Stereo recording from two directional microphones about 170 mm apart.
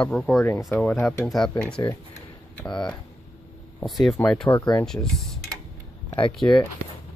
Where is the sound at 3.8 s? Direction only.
Centre (ahead or behind).